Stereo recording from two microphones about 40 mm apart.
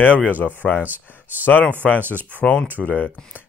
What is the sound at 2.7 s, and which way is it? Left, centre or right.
Speech, left.